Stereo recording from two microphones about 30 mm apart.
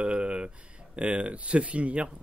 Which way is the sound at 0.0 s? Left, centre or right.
Right.